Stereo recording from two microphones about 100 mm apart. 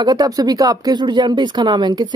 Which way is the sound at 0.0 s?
40° right (ahead or behind).